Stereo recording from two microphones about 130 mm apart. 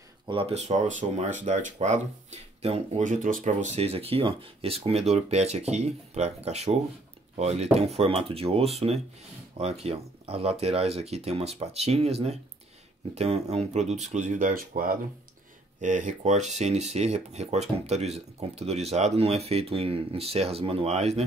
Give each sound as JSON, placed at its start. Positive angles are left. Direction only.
{"t": 0.3, "sound": "speech", "side_deg": -45}
{"t": 0.6, "sound": "speech", "side_deg": -60}
{"t": 3.0, "sound": "speech", "side_deg": -85}
{"t": 15.8, "sound": "speech", "side_deg": -75}